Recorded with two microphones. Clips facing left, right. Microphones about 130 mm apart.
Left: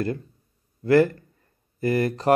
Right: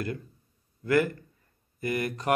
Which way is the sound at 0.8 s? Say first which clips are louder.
Left 7 dB; 30° left (ahead or behind).